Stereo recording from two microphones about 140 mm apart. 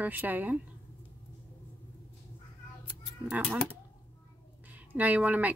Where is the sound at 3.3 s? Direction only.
10° right (ahead or behind).